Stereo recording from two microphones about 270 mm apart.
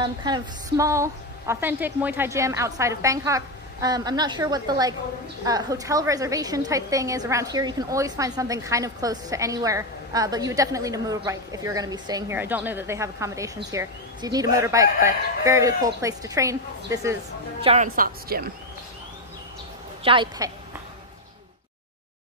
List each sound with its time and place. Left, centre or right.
0.0 s a woman's voice: centre
17.6 s a woman's voice: right
20.0 s a woman's voice: centre